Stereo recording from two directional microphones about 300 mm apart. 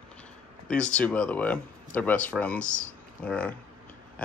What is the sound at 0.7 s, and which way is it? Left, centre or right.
Speech, centre.